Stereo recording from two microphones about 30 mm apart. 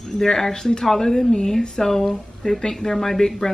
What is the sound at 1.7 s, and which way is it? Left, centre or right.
A woman's voice, centre.